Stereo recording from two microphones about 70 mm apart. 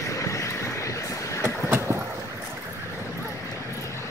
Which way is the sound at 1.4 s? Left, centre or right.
Right.